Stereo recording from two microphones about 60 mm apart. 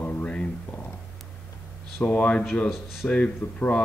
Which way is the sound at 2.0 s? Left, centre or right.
Left.